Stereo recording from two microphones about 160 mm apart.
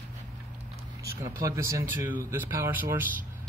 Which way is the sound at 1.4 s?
20° right (ahead or behind).